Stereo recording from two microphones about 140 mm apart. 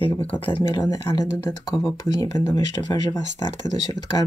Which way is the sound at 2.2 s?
30° left (ahead or behind).